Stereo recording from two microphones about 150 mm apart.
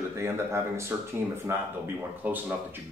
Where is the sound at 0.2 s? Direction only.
20° right (ahead or behind).